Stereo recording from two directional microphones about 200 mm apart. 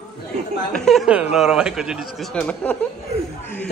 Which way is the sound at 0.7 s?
Centre (ahead or behind).